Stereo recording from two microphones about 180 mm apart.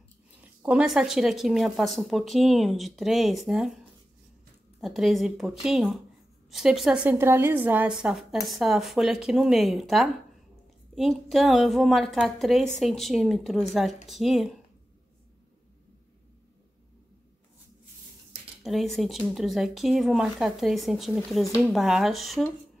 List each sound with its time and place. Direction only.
0.4 s a woman's voice: 5° right (ahead or behind)
18.6 s a woman's voice: centre (ahead or behind)